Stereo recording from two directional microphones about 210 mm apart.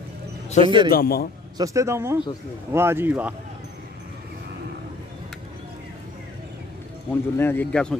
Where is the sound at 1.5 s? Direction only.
15° right (ahead or behind).